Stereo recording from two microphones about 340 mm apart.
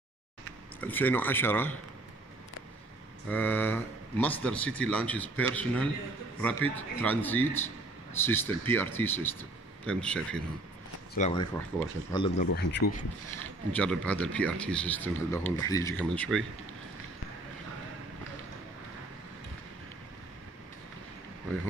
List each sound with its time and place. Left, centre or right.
0.7 s speech: centre
3.3 s speech: centre
11.1 s speech: centre
12.4 s speech: left
13.7 s speech: centre